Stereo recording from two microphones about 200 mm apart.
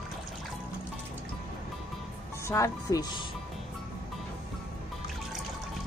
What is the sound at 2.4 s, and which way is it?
Speech, 15° left (ahead or behind).